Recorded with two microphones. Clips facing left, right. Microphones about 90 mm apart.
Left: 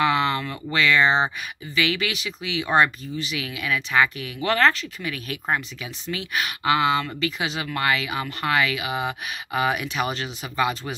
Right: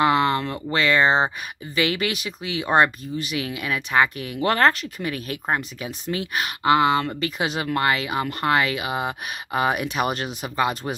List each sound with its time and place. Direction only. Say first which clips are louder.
0.0 s speech: right 2 dB; 40° right (ahead or behind)